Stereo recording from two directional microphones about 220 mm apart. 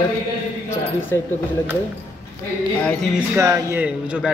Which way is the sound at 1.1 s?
10° left (ahead or behind).